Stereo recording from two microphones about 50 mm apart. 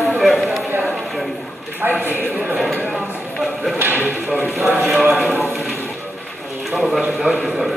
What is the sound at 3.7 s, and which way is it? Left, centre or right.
Speech, right.